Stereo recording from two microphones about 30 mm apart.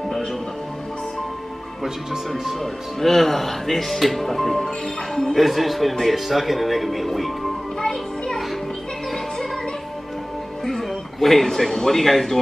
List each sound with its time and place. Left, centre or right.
2.6 s speech: centre
7.8 s music: left
10.6 s speech: centre